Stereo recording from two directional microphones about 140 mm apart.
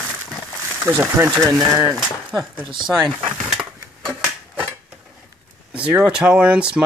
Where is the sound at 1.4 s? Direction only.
25° right (ahead or behind).